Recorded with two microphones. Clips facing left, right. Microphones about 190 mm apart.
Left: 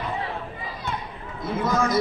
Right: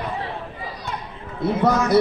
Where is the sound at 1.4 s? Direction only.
65° right (ahead or behind).